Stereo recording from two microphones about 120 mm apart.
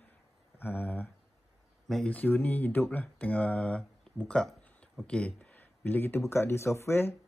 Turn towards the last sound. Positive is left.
turn(degrees=20)  # may be behind; listen again after turning